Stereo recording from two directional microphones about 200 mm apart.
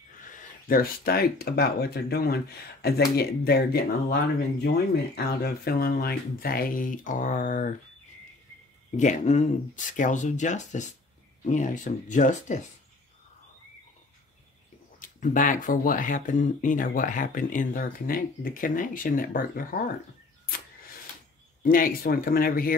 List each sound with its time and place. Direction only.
0.7 s speech: 50° left (ahead or behind)
8.9 s speech: 35° left (ahead or behind)
15.0 s speech: 40° left (ahead or behind)
21.6 s speech: 45° left (ahead or behind)